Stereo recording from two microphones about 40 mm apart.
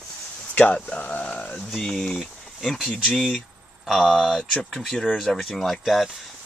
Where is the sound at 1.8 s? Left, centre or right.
Centre.